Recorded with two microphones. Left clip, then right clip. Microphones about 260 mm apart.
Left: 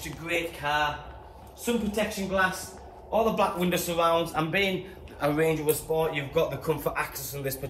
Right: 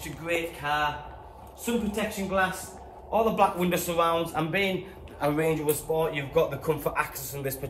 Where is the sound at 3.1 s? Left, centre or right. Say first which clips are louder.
Right 1 dB; right.